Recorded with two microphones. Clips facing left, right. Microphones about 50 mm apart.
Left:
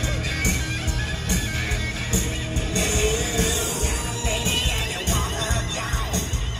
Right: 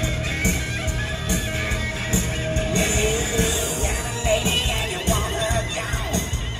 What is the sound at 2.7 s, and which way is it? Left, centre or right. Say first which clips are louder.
Music: even; right.